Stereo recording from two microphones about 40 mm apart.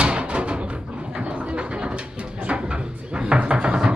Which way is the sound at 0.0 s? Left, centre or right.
Right.